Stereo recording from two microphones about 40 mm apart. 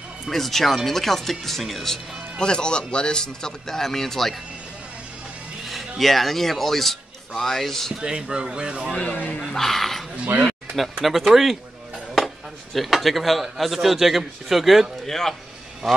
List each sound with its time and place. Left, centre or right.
0.3 s speech: centre
2.4 s speech: left
5.7 s speech: centre
7.9 s speech: centre
9.1 s speech: left
9.5 s speech: centre
12.2 s a sound: centre
12.7 s speech: centre
15.0 s speech: centre